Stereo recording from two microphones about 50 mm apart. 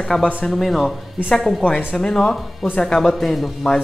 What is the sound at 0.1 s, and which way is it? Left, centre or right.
Speech, left.